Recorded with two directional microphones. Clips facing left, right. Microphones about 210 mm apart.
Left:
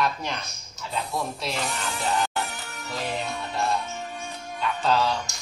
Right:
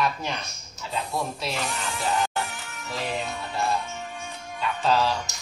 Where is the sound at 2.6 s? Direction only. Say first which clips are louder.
Left 1 dB; 35° left (ahead or behind).